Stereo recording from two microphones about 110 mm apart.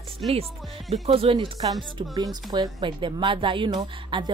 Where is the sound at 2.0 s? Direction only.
40° right (ahead or behind).